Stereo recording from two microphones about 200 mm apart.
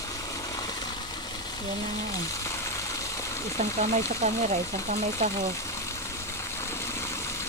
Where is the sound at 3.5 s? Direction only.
35° right (ahead or behind).